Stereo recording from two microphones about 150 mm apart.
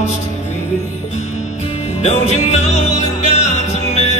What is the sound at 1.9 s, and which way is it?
Music, 45° left (ahead or behind).